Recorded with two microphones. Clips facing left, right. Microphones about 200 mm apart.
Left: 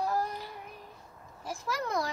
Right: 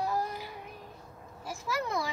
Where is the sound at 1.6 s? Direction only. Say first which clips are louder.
Even; 5° right (ahead or behind).